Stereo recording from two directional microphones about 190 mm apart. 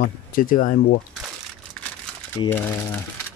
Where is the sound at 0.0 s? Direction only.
45° left (ahead or behind).